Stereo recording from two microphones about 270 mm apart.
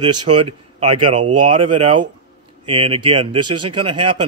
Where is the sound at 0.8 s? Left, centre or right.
Right.